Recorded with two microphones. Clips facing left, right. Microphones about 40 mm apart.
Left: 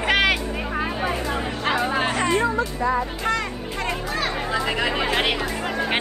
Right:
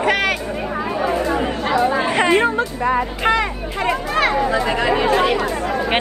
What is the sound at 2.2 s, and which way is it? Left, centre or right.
Speech, right.